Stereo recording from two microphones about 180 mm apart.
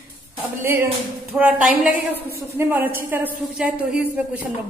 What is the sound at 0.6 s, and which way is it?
A woman's voice, 10° right (ahead or behind).